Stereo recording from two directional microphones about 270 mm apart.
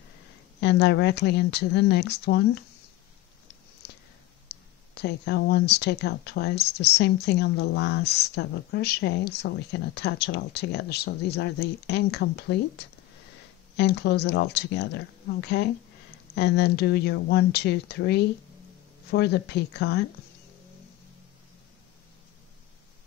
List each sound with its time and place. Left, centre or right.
0.6 s speech: left
4.9 s speech: left